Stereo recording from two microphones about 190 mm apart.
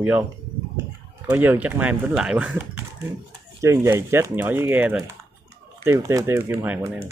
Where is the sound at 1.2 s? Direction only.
10° right (ahead or behind).